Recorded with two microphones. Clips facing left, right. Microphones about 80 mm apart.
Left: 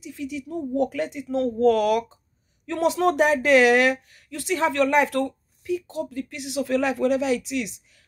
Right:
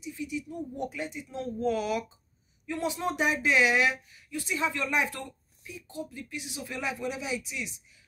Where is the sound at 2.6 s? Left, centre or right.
Left.